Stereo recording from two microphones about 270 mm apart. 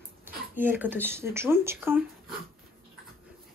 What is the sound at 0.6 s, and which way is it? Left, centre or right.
Speech, centre.